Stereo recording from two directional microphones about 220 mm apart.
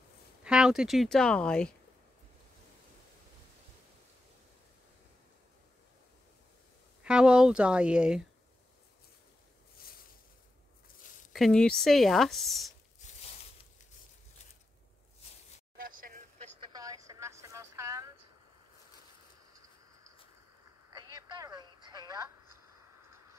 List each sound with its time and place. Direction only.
0.4 s speech: 5° right (ahead or behind)
7.0 s speech: 5° right (ahead or behind)
11.3 s speech: centre (ahead or behind)
15.8 s vehicle: 40° right (ahead or behind)
16.6 s vehicle: 15° right (ahead or behind)
20.9 s telephone: 20° right (ahead or behind)